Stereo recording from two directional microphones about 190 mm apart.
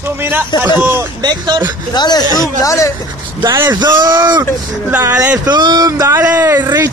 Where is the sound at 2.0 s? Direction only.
20° left (ahead or behind).